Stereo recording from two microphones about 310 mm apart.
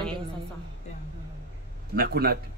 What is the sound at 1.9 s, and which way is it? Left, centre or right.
Speech, right.